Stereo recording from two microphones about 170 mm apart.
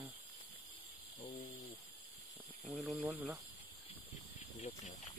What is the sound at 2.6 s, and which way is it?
Speech, centre (ahead or behind).